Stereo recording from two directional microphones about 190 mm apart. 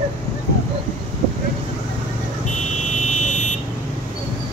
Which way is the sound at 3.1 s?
40° left (ahead or behind).